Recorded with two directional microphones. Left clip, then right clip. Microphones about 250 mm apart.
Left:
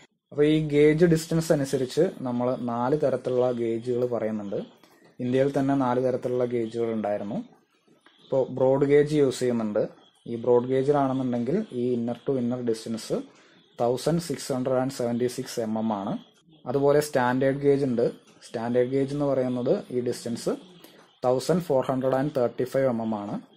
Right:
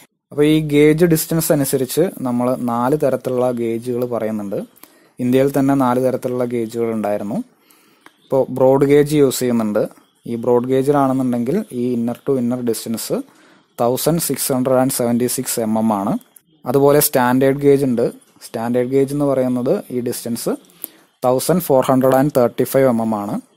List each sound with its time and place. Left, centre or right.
0.4 s speech: right
21.2 s speech: right